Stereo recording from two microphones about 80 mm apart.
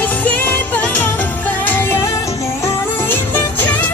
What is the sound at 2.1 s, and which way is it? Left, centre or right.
Music, left.